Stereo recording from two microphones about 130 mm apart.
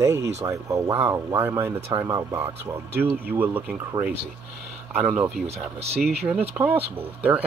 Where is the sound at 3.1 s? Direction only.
15° right (ahead or behind).